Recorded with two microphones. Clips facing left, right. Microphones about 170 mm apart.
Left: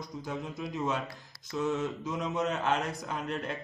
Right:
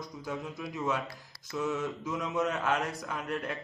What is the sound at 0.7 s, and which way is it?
Speech, 20° left (ahead or behind).